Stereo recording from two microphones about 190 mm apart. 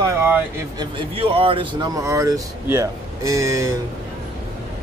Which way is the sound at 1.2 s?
30° right (ahead or behind).